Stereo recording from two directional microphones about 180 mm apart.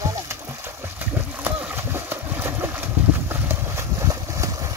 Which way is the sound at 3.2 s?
15° right (ahead or behind).